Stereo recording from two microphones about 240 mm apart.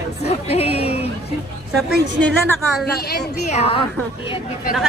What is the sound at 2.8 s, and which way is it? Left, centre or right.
Speech, left.